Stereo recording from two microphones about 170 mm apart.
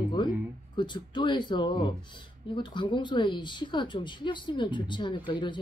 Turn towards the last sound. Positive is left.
turn(degrees=25)  # may be behind; listen again after turning